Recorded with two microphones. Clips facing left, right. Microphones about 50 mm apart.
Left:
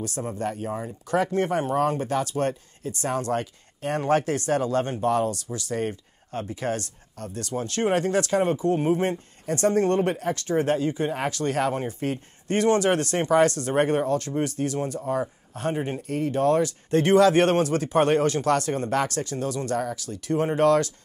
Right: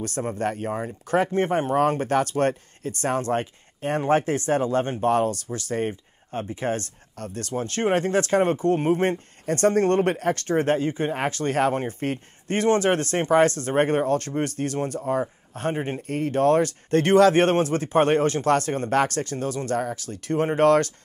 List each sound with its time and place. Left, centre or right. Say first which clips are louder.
0.0 s speech: right 3 dB; right
1.8 s speech: right 3 dB; right
5.9 s speech: right 1 dB; right
16.0 s speech: right 3 dB; right